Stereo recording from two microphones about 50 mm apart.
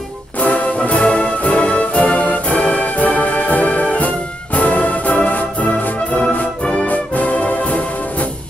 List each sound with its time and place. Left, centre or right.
0.4 s music: left